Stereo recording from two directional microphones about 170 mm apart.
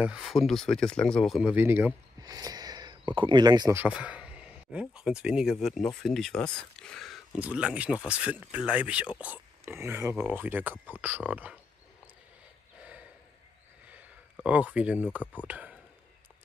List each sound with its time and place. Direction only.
0.0 s speech: 5° right (ahead or behind)
2.2 s speech: 20° right (ahead or behind)
3.8 s speech: 5° right (ahead or behind)
13.8 s a sound: 10° right (ahead or behind)
15.4 s speech: 10° right (ahead or behind)